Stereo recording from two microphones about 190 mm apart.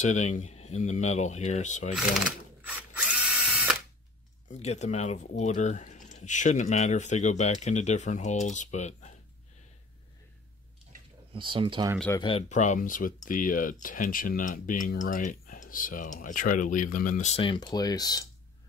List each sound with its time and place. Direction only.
0.0 s speech: 40° left (ahead or behind)
2.0 s drill: 5° right (ahead or behind)
4.5 s speech: 35° left (ahead or behind)
11.3 s speech: 25° right (ahead or behind)
12.2 s speech: 30° left (ahead or behind)